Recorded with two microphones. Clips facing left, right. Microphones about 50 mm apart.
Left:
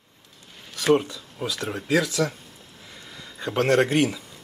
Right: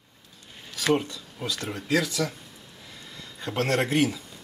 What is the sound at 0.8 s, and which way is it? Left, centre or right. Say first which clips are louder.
Speech: left 4 dB; centre.